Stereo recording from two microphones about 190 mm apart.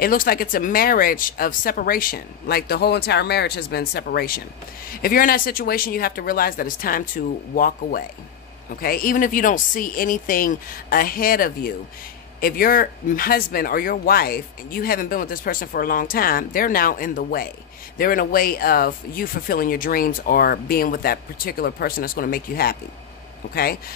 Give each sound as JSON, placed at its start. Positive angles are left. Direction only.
{"t": 0.0, "sound": "speech", "side_deg": 50}